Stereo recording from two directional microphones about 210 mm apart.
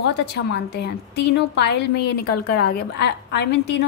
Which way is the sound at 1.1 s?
55° left (ahead or behind).